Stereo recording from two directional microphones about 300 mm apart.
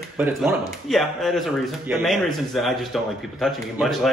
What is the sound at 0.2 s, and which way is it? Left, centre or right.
A man's voice, centre.